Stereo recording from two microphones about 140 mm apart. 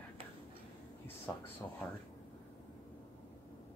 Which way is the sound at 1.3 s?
20° left (ahead or behind).